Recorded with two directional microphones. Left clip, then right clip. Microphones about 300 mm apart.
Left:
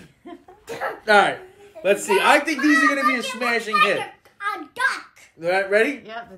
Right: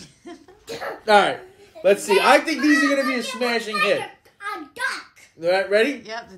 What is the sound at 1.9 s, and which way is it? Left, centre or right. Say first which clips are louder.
Speech: right 1 dB; right.